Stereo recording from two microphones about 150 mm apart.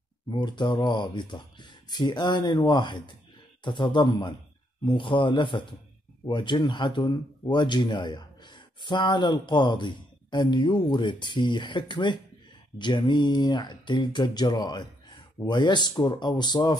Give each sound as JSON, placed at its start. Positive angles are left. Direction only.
{"t": 0.3, "sound": "speech", "side_deg": 30}